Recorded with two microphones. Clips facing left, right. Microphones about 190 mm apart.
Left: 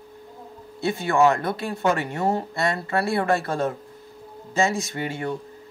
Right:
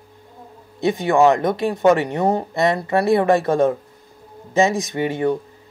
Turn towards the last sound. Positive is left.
turn(degrees=-20)  # may be behind; listen again after turning